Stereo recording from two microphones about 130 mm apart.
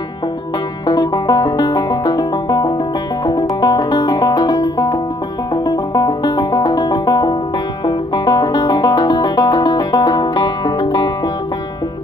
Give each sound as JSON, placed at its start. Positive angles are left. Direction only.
{"t": 0.8, "sound": "music", "side_deg": 35}